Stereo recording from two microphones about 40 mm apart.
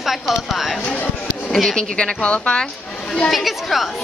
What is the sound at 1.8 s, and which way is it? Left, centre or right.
Speech, left.